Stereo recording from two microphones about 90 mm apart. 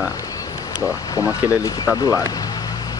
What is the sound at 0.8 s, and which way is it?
Speech, 40° left (ahead or behind).